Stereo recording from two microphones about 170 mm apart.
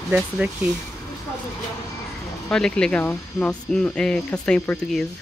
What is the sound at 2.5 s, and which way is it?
Speech, 5° left (ahead or behind).